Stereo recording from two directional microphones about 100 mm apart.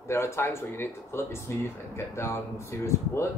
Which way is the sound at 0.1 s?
25° left (ahead or behind).